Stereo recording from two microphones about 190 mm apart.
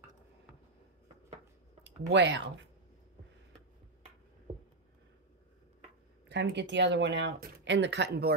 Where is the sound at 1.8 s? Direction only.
70° right (ahead or behind).